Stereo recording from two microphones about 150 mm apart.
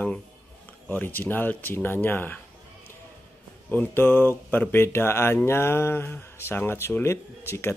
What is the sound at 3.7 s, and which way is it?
Speech, 15° left (ahead or behind).